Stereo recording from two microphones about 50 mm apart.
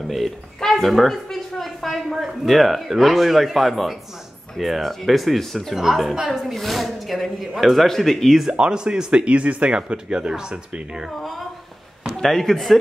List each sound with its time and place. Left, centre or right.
0.1 s a woman's voice: centre
5.8 s a woman's voice: centre
8.5 s speech: centre
11.1 s a woman's voice: centre